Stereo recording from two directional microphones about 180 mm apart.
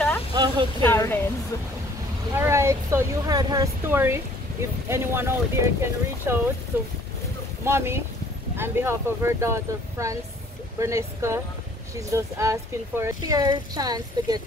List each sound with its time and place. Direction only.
0.3 s a sound: 25° right (ahead or behind)
0.8 s a woman's voice: 10° left (ahead or behind)
2.3 s speech: 15° right (ahead or behind)